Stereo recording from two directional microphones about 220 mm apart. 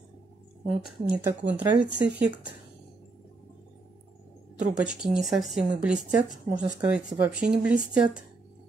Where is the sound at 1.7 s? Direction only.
50° right (ahead or behind).